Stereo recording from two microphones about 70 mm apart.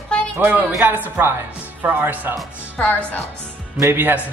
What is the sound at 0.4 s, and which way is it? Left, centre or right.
Speech, right.